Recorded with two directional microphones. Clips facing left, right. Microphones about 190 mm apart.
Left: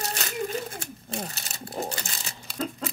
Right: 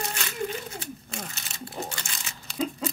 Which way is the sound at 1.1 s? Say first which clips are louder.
Left 4 dB; 35° left (ahead or behind).